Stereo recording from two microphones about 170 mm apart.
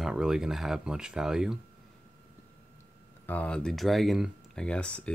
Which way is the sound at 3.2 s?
10° left (ahead or behind).